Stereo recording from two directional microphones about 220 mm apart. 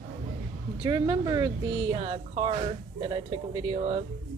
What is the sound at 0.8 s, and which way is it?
Speech, 15° right (ahead or behind).